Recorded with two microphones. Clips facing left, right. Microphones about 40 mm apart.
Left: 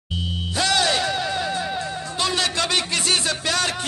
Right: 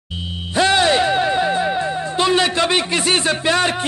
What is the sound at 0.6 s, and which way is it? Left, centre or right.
Music, right.